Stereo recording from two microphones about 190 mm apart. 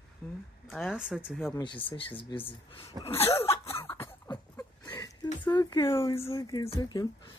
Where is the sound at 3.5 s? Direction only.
15° left (ahead or behind).